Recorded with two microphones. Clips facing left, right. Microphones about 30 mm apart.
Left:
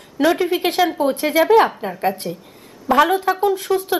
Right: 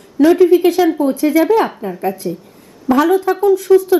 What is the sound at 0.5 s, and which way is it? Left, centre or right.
Speech, left.